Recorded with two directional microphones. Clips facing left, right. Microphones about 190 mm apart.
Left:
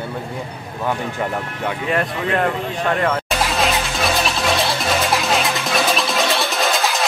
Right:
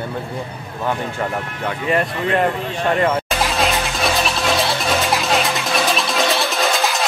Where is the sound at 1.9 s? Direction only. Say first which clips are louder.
Right 2 dB; centre (ahead or behind).